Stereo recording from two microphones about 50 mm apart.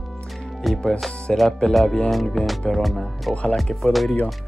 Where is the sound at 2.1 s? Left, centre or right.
Centre.